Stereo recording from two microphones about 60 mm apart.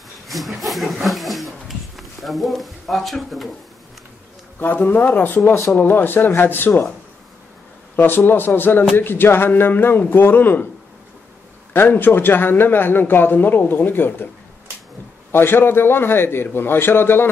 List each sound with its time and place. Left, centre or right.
0.3 s speech: centre
1.0 s a sound: centre
4.6 s a man's voice: left
7.9 s a man's voice: left
11.7 s a man's voice: left
15.3 s a man's voice: left